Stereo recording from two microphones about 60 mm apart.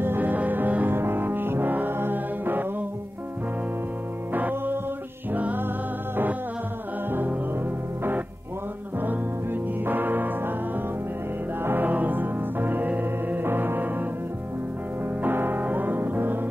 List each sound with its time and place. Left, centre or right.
0.0 s music: right
4.3 s music: right
7.1 s music: right
9.0 s music: right
11.6 s music: right
15.2 s music: right